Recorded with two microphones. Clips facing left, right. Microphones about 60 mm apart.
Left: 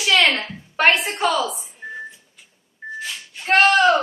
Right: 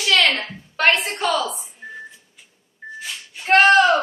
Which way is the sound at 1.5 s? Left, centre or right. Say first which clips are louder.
Left 3 dB; centre.